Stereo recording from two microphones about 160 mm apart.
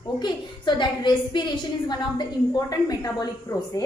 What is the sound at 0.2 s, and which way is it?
A woman's voice, 30° left (ahead or behind).